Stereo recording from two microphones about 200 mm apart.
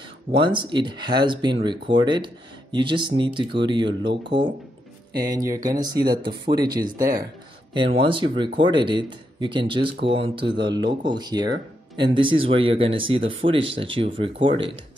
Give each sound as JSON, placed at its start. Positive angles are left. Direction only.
{"t": 0.3, "sound": "speech", "side_deg": -25}
{"t": 13.4, "sound": "speech", "side_deg": -45}
{"t": 13.7, "sound": "speech", "side_deg": -25}